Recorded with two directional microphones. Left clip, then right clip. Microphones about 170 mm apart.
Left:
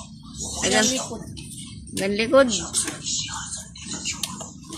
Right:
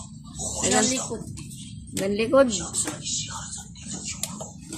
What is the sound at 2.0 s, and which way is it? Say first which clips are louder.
Speech: left 2 dB; centre (ahead or behind).